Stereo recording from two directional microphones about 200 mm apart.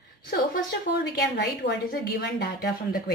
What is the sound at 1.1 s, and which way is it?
A woman's voice, 55° left (ahead or behind).